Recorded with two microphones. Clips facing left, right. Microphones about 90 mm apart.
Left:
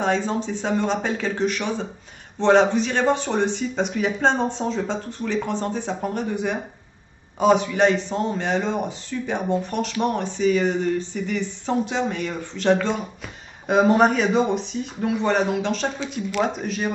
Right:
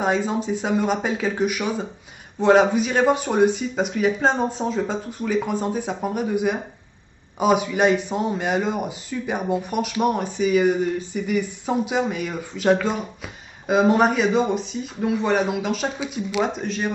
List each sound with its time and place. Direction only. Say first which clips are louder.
0.0 s a man's voice: right 1 dB; 10° right (ahead or behind)